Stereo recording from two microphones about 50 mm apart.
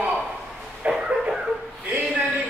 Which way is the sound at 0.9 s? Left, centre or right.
Centre.